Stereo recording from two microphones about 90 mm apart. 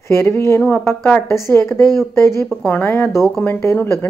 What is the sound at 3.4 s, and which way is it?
Speech, 25° left (ahead or behind).